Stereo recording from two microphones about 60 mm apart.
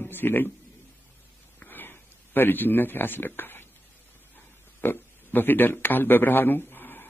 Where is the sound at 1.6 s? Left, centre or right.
Left.